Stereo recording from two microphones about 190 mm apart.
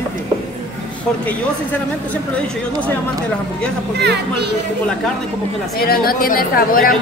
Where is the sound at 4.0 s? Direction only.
60° right (ahead or behind).